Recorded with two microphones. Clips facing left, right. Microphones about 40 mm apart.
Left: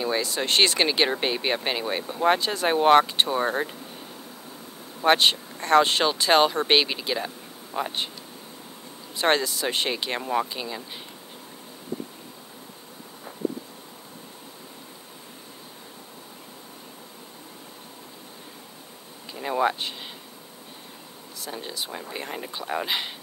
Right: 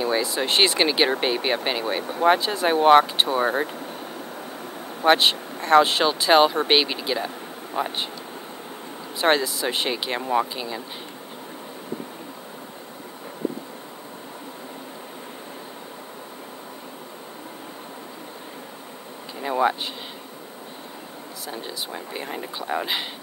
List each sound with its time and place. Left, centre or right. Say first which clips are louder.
0.0 s speech: right 3 dB; centre
5.0 s speech: right 2 dB; centre
9.2 s speech: right 2 dB; centre
19.4 s a sound: right 2 dB; centre
21.5 s speech: right 1 dB; centre